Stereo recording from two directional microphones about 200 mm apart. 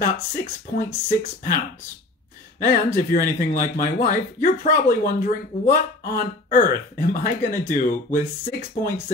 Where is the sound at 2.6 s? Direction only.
45° left (ahead or behind).